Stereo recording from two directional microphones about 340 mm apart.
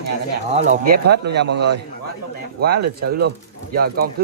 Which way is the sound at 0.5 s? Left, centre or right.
Centre.